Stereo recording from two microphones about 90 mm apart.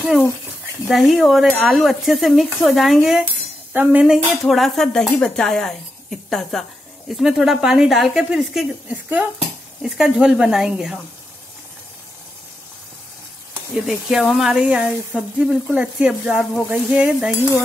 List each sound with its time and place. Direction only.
0.8 s speech: 5° right (ahead or behind)
3.7 s dishes: 20° right (ahead or behind)
4.1 s speech: centre (ahead or behind)
8.8 s speech: 15° right (ahead or behind)
9.8 s speech: 5° right (ahead or behind)
13.7 s speech: 5° right (ahead or behind)